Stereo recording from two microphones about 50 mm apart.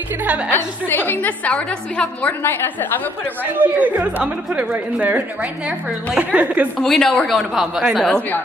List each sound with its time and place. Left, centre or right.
0.2 s a woman's voice: right
0.5 s a woman's voice: left
1.5 s a woman's voice: centre
2.4 s a woman's voice: left
3.5 s speech: right
6.8 s a woman's voice: centre